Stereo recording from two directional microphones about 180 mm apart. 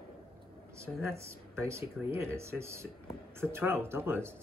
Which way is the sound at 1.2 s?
15° right (ahead or behind).